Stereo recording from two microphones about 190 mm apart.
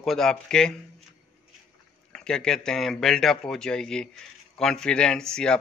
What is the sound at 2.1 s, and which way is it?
Speech, 5° left (ahead or behind).